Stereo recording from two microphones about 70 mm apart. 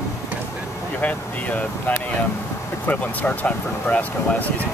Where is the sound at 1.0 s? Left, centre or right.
Left.